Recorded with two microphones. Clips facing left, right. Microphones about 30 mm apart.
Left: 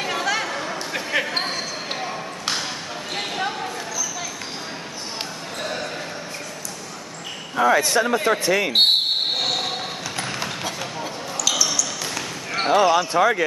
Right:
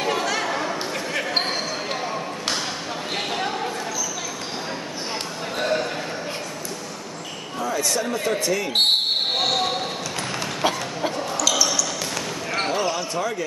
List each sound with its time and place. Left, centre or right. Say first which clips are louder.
0.0 s chatter: even; centre
1.1 s basketball bounce: left 5 dB; left
1.9 s basketball bounce: right 1 dB; centre
3.2 s a sound: left 1 dB; centre
5.6 s basketball bounce: right 6 dB; centre
7.5 s basketball bounce: left 9 dB; left
7.8 s speech: left 4 dB; left
8.7 s speech: left 1 dB; centre
9.4 s basketball bounce: right 2 dB; centre
11.3 s basketball bounce: left 1 dB; centre
12.6 s speech: left 8 dB; centre
12.9 s speech: left 8 dB; left